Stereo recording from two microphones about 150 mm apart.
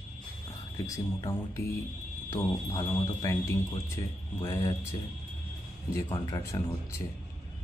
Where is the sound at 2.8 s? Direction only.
20° left (ahead or behind).